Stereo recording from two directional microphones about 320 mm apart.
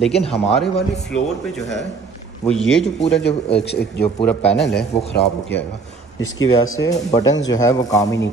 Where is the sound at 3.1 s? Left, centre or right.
Left.